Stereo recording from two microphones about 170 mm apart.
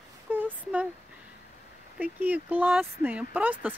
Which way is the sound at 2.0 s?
10° right (ahead or behind).